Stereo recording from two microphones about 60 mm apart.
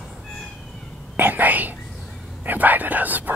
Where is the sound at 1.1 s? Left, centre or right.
Right.